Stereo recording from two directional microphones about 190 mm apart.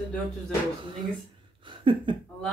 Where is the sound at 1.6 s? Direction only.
25° right (ahead or behind).